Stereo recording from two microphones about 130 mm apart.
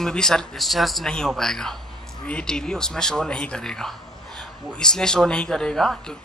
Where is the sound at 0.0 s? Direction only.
5° left (ahead or behind).